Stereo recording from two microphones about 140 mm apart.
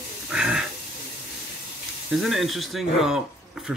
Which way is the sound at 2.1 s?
Centre (ahead or behind).